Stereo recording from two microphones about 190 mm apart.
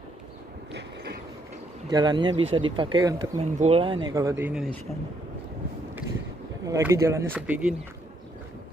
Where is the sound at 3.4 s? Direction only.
35° right (ahead or behind); by 4.5 s 15° right (ahead or behind).